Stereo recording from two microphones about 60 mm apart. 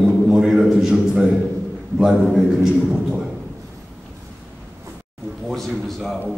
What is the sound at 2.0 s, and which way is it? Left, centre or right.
A man's voice, centre.